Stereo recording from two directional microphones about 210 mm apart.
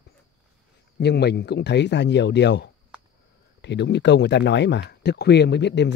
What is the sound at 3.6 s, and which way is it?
Speech, 55° left (ahead or behind).